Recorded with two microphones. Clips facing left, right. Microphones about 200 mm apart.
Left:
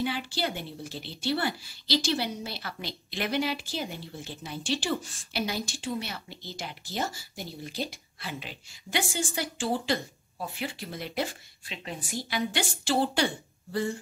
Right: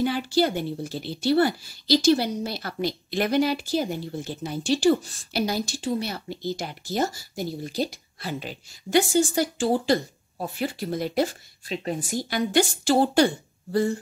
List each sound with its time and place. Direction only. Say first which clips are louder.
0.0 s speech: right 8 dB; 40° right (ahead or behind)